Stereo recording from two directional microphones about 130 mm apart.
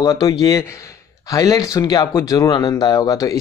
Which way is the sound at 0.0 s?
30° left (ahead or behind).